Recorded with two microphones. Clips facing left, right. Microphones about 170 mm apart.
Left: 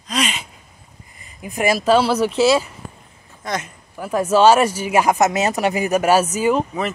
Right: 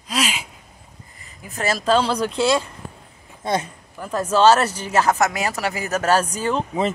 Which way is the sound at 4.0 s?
10° left (ahead or behind).